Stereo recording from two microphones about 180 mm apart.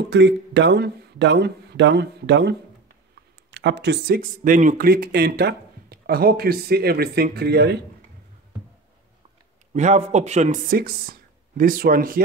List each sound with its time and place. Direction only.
0.1 s speech: 75° right (ahead or behind)
3.5 s speech: 70° right (ahead or behind)
9.8 s speech: 40° right (ahead or behind)